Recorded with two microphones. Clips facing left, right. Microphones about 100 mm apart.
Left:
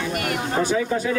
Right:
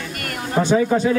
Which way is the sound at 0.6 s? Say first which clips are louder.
Right 8 dB; 30° right (ahead or behind).